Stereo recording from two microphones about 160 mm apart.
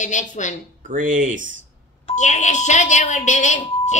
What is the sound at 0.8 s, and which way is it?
Speech, 55° right (ahead or behind).